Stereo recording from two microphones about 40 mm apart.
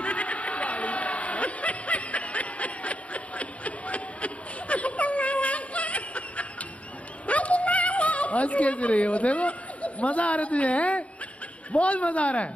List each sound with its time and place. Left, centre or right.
0.0 s a sound: left
7.2 s yodeling: left
11.7 s a man's voice: left